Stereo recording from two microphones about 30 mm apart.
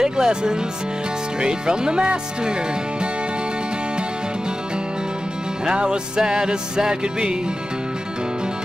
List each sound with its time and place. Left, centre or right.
0.0 s speech: right
1.4 s music: right
5.7 s music: right